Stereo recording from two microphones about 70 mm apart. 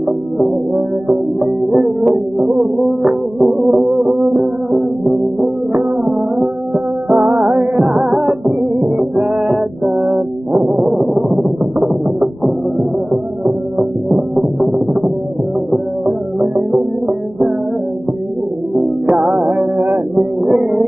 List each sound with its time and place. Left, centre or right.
0.7 s music: right
8.5 s music: right
10.9 s music: centre
14.0 s music: centre
16.3 s music: centre
18.8 s music: centre
20.4 s music: centre